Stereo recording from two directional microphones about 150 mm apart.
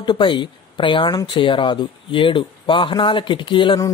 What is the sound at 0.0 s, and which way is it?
Speech, 30° left (ahead or behind).